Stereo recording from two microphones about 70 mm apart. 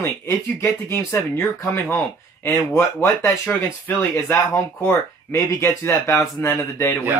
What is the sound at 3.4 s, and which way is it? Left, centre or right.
Speech, left.